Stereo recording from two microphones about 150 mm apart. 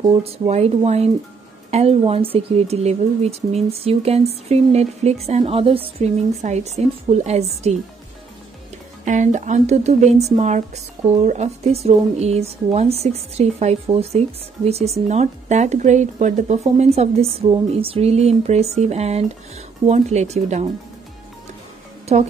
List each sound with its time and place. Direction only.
0.0 s a woman's voice: 40° right (ahead or behind)
9.0 s a woman's voice: 55° right (ahead or behind)